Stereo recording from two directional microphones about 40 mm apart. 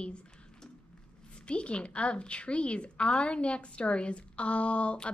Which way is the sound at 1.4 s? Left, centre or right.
Left.